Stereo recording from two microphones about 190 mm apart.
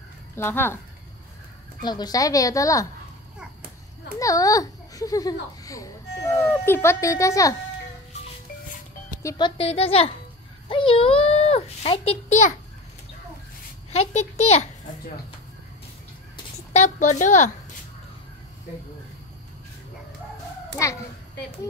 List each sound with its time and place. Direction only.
0.4 s a woman's voice: 10° left (ahead or behind)
1.8 s a woman's voice: 20° left (ahead or behind)
4.2 s a child's voice: 15° left (ahead or behind)
9.2 s speech: 15° left (ahead or behind)
9.6 s a child's voice: 30° left (ahead or behind)
13.9 s a child's voice: 35° left (ahead or behind)
16.7 s a child's voice: 35° left (ahead or behind)